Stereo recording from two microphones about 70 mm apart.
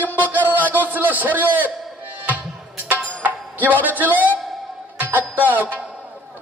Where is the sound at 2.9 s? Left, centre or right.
Right.